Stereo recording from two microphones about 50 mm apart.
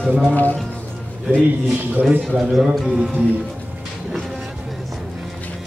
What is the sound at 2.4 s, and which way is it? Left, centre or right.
Speech, centre.